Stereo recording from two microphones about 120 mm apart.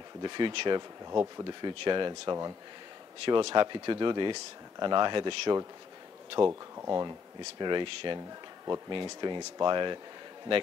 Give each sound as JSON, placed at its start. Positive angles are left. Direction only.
{"t": 0.2, "sound": "speech", "side_deg": -40}
{"t": 6.4, "sound": "speech", "side_deg": -20}
{"t": 7.0, "sound": "speech", "side_deg": -35}